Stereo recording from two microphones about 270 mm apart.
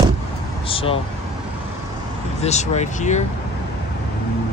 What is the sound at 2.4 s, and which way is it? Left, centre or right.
Speech, left.